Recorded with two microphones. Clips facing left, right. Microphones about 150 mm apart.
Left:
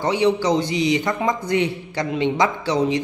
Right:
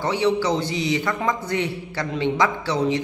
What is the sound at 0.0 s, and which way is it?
A man's voice, 15° left (ahead or behind).